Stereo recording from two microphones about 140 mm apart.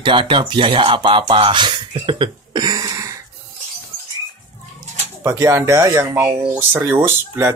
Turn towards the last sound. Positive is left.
turn(degrees=-20)  # may be behind; listen again after turning